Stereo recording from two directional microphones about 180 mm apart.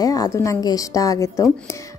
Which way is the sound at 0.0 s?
20° left (ahead or behind).